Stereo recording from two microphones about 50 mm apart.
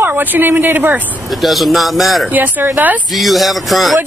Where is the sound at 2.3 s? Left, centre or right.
Right.